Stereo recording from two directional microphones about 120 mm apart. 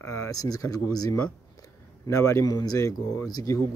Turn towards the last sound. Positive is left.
turn(degrees=30)  # may be behind; listen again after turning